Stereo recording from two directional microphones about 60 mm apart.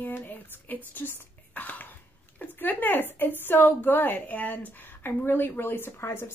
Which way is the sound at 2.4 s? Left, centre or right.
Left.